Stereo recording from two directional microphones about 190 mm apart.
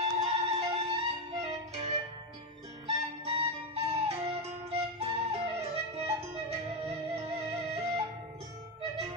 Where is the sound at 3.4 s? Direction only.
30° right (ahead or behind).